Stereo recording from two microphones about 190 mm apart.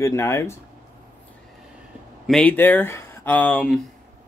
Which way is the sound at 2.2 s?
5° left (ahead or behind).